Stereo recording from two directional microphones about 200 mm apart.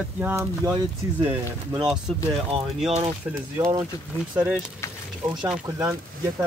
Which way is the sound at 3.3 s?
15° right (ahead or behind).